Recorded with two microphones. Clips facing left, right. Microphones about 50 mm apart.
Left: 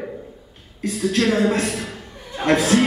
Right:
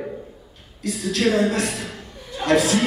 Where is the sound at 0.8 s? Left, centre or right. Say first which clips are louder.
Left 2 dB; left.